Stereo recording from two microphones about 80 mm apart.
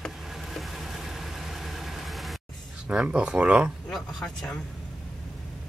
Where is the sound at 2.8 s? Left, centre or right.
Centre.